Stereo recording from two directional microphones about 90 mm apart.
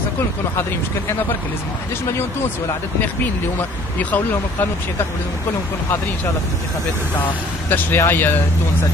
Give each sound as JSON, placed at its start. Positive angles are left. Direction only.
{"t": 7.7, "sound": "speech", "side_deg": 25}